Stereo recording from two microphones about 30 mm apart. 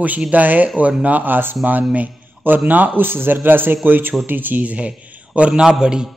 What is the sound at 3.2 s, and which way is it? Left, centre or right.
A man's voice, right.